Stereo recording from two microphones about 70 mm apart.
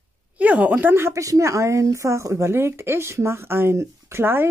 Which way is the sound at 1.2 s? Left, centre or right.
Right.